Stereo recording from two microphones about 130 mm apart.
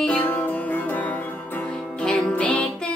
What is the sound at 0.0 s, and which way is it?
Music, 10° left (ahead or behind).